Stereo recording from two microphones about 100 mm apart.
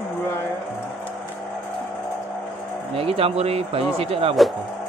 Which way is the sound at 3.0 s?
80° right.